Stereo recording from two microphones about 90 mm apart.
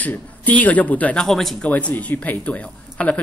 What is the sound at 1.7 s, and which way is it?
Speech, 15° left (ahead or behind).